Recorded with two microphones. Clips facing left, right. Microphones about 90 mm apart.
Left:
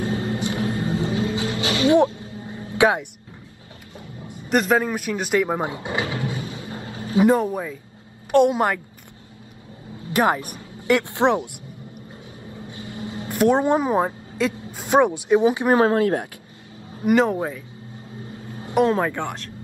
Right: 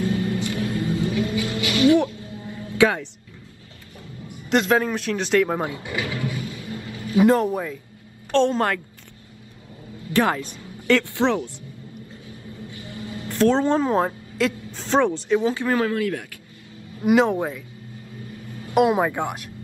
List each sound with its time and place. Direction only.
0.0 s vehicle: 30° left (ahead or behind)
4.5 s a man's voice: 5° left (ahead or behind)
5.7 s music: 25° left (ahead or behind)
7.2 s a man's voice: 5° left (ahead or behind)
10.0 s speech: 20° left (ahead or behind)
12.3 s a sound: 25° left (ahead or behind)
14.7 s a woman's voice: 10° left (ahead or behind)
15.9 s speech: 30° left (ahead or behind)
17.0 s speech: centre (ahead or behind)
18.2 s a sound: 30° left (ahead or behind)
18.8 s speech: 10° right (ahead or behind)